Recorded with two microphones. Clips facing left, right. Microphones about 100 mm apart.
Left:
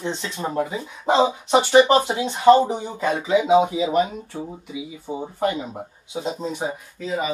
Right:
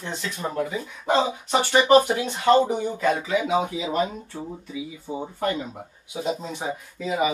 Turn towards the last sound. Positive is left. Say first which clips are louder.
# right 2 dB
turn(degrees=-10)  # may be behind; listen again after turning